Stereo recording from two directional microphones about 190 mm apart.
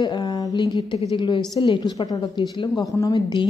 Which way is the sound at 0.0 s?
20° left (ahead or behind).